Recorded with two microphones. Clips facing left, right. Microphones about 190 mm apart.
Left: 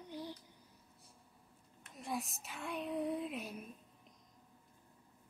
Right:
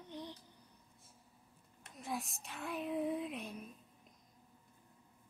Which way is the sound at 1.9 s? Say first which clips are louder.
Left 1 dB; centre (ahead or behind).